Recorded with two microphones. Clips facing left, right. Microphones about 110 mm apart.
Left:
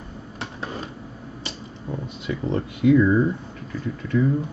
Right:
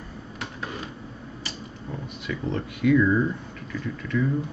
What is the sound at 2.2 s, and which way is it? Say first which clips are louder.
Speech: left 3 dB; 25° left (ahead or behind).